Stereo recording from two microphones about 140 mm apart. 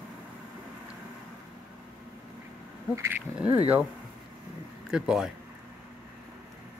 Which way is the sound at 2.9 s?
20° right (ahead or behind).